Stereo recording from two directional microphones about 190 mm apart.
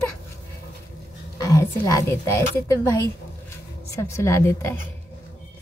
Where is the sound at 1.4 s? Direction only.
15° left (ahead or behind).